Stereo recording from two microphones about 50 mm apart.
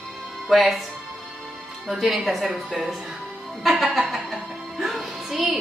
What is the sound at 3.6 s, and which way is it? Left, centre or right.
Music, centre.